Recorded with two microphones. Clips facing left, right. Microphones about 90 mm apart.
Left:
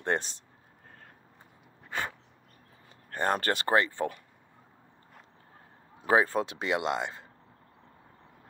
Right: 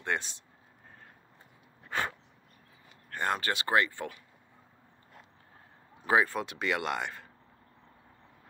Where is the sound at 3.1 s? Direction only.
40° left (ahead or behind).